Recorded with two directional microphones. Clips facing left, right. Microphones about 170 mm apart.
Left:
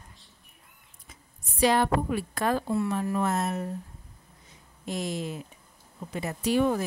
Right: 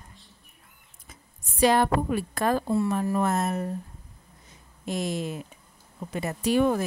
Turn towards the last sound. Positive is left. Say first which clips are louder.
# right 2 dB
turn(degrees=-50)  # may be behind; listen again after turning